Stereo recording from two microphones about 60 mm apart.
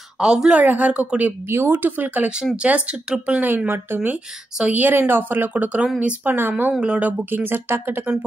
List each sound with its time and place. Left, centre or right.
0.2 s a woman's voice: centre
0.6 s a woman's voice: right
1.5 s a woman's voice: right; by 3.4 s centre
3.4 s a woman's voice: right
6.8 s speech: right